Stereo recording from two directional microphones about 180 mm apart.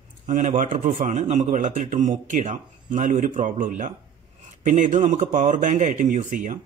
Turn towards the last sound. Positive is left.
turn(degrees=-45)  # may be behind; listen again after turning